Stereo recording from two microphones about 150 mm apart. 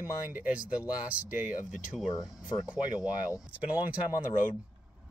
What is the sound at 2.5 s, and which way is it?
Speech, 30° left (ahead or behind).